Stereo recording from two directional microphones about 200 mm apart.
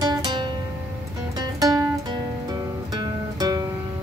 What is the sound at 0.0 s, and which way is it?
Music, 20° right (ahead or behind).